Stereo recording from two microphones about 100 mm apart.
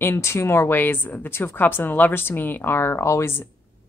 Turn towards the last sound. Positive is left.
turn(degrees=25)  # may be behind; listen again after turning